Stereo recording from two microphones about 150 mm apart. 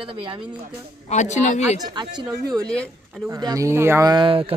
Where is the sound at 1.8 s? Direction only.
30° right (ahead or behind).